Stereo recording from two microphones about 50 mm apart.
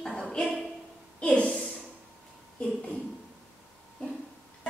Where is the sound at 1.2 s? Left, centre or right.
Centre.